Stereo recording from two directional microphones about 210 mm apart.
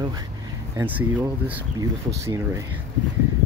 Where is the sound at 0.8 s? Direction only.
10° right (ahead or behind).